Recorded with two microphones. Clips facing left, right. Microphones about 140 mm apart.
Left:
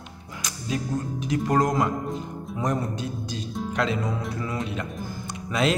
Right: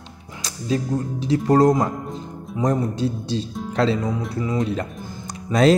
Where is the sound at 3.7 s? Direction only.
30° right (ahead or behind).